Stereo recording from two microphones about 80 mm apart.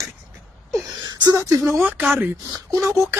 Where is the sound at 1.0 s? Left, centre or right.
Right.